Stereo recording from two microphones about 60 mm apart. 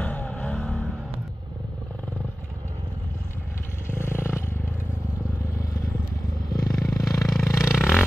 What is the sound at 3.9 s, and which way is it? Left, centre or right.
Vehicle, left.